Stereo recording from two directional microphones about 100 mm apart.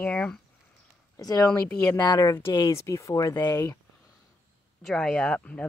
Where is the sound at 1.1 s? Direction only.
35° left (ahead or behind).